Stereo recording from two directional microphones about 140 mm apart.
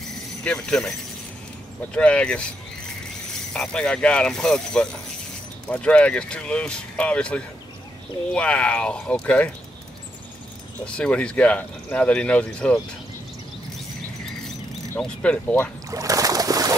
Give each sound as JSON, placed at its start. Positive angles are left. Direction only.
{"t": 0.4, "sound": "speech", "side_deg": 5}
{"t": 2.0, "sound": "speech", "side_deg": 5}
{"t": 3.5, "sound": "speech", "side_deg": 5}
{"t": 11.0, "sound": "speech", "side_deg": 10}
{"t": 15.0, "sound": "speech", "side_deg": 10}
{"t": 15.9, "sound": "boat", "side_deg": -25}